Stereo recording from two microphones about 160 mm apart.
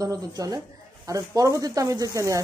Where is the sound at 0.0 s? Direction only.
20° right (ahead or behind).